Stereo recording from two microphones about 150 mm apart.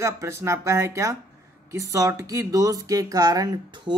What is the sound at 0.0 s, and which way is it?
Speech, 20° right (ahead or behind).